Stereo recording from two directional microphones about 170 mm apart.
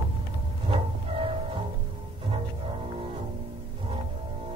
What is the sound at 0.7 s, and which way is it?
Music, 30° right (ahead or behind).